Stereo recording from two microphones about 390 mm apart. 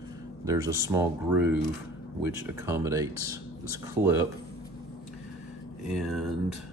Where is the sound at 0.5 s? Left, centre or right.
Centre.